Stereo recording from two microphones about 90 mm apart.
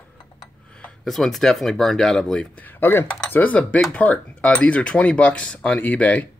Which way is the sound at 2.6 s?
20° left (ahead or behind).